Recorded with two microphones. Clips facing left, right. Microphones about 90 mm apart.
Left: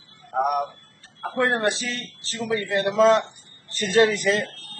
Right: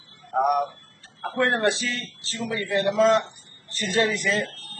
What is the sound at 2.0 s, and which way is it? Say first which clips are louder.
Speech: left 1 dB; 60° left (ahead or behind).